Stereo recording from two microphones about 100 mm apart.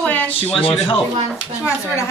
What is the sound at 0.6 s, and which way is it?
Speech, 65° left (ahead or behind).